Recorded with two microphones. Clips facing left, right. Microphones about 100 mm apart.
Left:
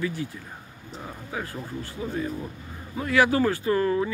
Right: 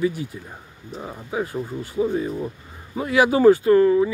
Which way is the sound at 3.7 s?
25° right (ahead or behind).